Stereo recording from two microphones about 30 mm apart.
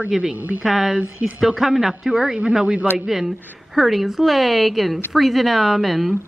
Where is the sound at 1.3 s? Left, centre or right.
Centre.